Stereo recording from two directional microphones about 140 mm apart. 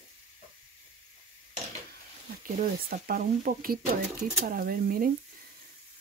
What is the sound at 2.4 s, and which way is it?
Speech, 85° right.